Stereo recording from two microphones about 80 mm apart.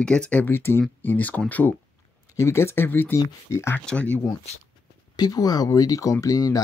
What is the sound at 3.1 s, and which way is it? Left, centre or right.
Speech, left.